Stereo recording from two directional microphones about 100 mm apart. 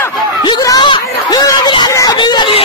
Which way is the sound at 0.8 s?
50° left (ahead or behind).